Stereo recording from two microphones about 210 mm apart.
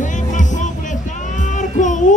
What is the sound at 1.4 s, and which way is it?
Child singing, 35° left (ahead or behind).